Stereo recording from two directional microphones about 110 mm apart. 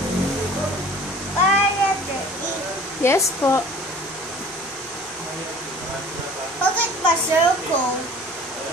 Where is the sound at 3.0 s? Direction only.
25° left (ahead or behind).